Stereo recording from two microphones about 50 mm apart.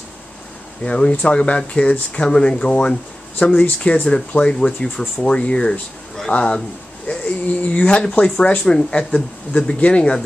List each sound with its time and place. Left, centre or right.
0.8 s speech: left